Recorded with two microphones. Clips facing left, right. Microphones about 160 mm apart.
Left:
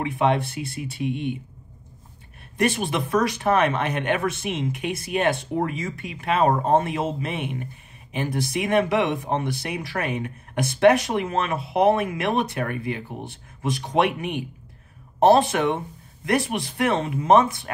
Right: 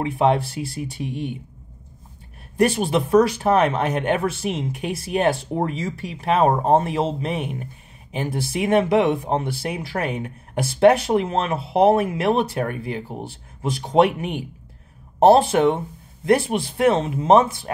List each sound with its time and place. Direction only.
0.0 s speech: 35° right (ahead or behind)
2.5 s speech: 35° right (ahead or behind)